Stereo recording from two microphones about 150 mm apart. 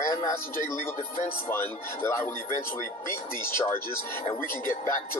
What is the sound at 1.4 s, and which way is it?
Speech, 15° left (ahead or behind).